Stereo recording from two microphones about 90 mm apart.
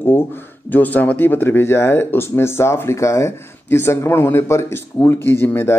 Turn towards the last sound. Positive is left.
turn(degrees=25)  # may be behind; listen again after turning